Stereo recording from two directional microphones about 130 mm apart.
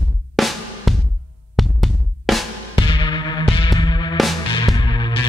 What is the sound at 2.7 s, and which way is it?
Music, 40° left (ahead or behind).